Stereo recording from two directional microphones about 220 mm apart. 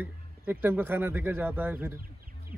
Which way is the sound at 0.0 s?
10° right (ahead or behind).